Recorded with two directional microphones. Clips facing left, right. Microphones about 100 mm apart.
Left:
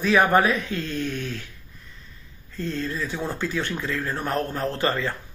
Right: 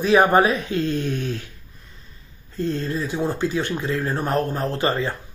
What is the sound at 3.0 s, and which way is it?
Speech, 15° right (ahead or behind).